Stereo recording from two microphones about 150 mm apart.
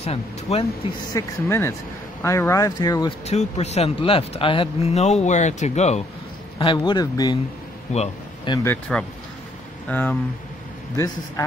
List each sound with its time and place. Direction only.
0.0 s speech: 45° left (ahead or behind)
1.1 s speech: 15° left (ahead or behind)
3.3 s speech: 45° left (ahead or behind)
6.6 s speech: 30° left (ahead or behind)
7.9 s speech: 55° left (ahead or behind)
8.6 s speech: 5° left (ahead or behind)